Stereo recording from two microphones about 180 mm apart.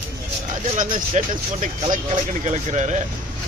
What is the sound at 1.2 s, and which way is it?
Speech, 40° right (ahead or behind).